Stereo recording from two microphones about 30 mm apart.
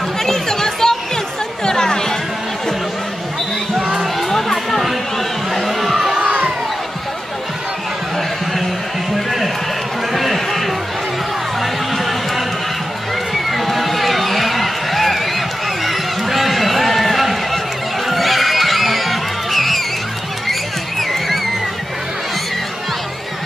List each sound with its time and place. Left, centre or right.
0.2 s chatter: centre
4.2 s music: centre
5.5 s a sound: centre
10.1 s a sound: centre
13.3 s run: centre
18.0 s music: centre
21.0 s music: centre